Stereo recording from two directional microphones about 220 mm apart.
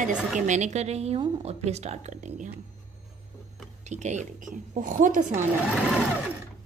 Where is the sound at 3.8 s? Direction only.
30° right (ahead or behind).